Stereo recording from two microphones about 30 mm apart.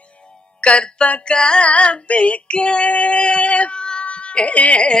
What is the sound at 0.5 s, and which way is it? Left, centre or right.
Music, left.